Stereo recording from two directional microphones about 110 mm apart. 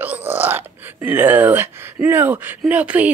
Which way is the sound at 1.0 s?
15° right (ahead or behind).